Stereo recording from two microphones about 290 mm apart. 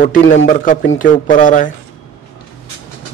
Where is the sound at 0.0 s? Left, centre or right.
Left.